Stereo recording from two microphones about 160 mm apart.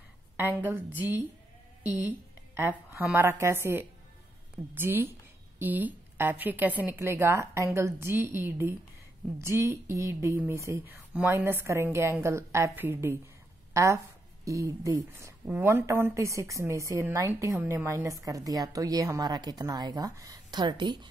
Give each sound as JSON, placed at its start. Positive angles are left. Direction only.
{"t": 0.6, "sound": "a woman's voice", "side_deg": -15}
{"t": 14.4, "sound": "a woman's voice", "side_deg": -20}